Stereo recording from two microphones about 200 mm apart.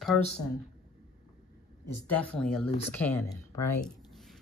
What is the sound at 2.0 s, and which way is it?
Speech, 5° left (ahead or behind).